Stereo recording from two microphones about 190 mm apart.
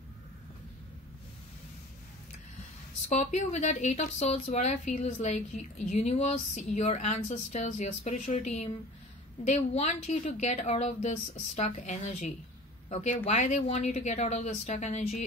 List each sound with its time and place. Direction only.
3.1 s speech: 40° left (ahead or behind)